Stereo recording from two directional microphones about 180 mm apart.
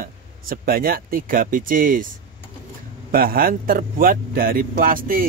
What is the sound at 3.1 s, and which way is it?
Speech, 55° right (ahead or behind).